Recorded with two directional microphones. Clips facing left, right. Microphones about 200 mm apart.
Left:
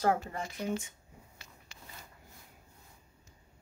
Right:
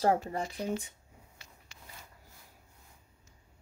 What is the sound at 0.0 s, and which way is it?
Speech, 35° right (ahead or behind).